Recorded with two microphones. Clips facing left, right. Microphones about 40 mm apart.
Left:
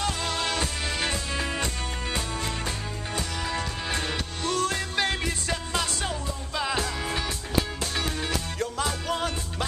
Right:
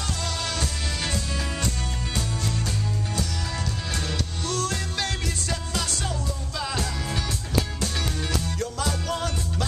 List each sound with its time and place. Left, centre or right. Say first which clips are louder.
0.0 s music: left 2 dB; centre
3.2 s music: left 1 dB; centre